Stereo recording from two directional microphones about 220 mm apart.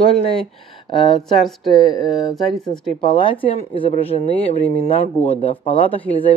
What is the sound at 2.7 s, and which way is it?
Speech, 20° left (ahead or behind).